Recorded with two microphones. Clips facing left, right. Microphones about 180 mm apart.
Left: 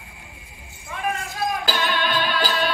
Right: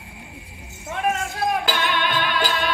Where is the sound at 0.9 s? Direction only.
75° right (ahead or behind).